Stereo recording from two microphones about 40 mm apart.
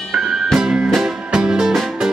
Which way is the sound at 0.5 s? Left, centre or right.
Centre.